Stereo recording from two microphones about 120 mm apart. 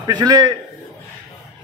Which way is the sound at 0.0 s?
35° right (ahead or behind).